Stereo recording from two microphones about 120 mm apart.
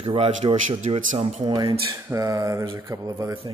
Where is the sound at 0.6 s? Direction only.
90° right; by 1.5 s 70° right (ahead or behind).